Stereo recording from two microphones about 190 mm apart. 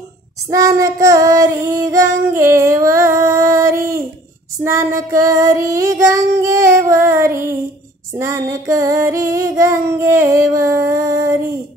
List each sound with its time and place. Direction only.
0.5 s child singing: 15° right (ahead or behind)
5.4 s child singing: 15° right (ahead or behind)